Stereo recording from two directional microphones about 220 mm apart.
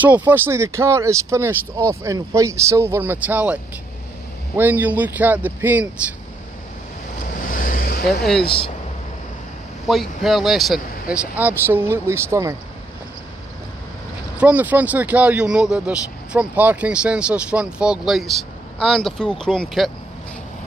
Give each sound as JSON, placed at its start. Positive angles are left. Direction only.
{"t": 0.0, "sound": "speech", "side_deg": -5}
{"t": 4.6, "sound": "speech", "side_deg": -10}
{"t": 7.5, "sound": "a sound", "side_deg": 40}
{"t": 9.8, "sound": "speech", "side_deg": 0}
{"t": 14.4, "sound": "speech", "side_deg": -5}